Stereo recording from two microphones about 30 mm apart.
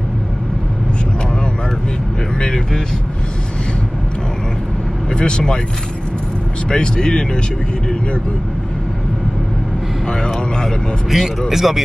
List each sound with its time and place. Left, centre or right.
2.3 s speech: left
5.1 s speech: left
6.7 s speech: left
10.0 s speech: left
11.1 s speech: centre